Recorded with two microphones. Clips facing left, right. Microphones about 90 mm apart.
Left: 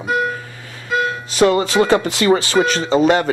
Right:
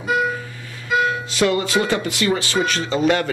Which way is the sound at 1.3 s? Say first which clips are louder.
Left 7 dB; 35° left (ahead or behind).